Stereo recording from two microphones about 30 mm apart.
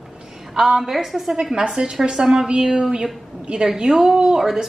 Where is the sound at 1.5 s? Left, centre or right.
Right.